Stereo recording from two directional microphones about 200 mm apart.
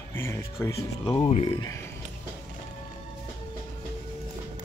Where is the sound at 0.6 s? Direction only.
20° left (ahead or behind).